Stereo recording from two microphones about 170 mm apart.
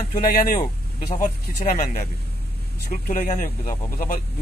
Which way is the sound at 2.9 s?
55° left (ahead or behind).